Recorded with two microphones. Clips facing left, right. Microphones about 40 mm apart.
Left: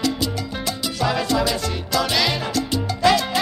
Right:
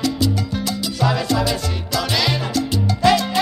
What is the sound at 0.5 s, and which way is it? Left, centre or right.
Salsa music, left.